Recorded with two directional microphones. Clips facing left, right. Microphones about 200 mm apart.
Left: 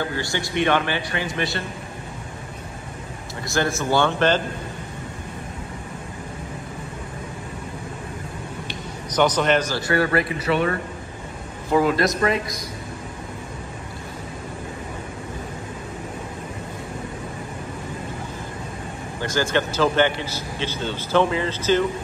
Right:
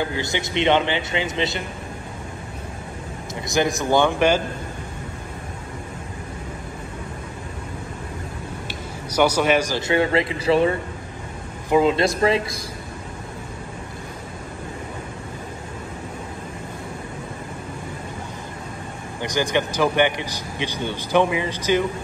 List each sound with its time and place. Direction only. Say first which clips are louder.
0.1 s a man's voice: right 1 dB; 20° right (ahead or behind)
3.4 s a man's voice: right 2 dB; 15° right (ahead or behind)
9.1 s a man's voice: right 1 dB; 10° right (ahead or behind); by 12.5 s 30° right (ahead or behind)
19.2 s a man's voice: even; 15° right (ahead or behind)